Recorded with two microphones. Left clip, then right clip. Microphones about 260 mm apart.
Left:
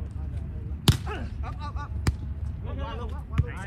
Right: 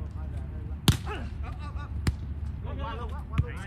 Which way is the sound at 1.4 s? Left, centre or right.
Centre.